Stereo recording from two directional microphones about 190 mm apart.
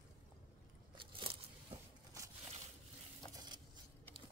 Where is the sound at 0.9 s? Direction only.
25° right (ahead or behind).